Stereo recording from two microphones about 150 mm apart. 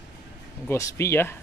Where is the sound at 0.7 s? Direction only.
20° left (ahead or behind).